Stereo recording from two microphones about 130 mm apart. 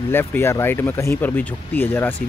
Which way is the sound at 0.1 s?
15° left (ahead or behind).